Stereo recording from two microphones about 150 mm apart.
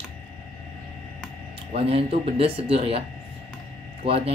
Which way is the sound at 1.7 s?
40° right (ahead or behind).